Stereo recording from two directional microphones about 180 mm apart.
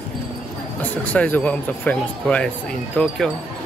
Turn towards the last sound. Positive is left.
turn(degrees=5)  # may be behind; listen again after turning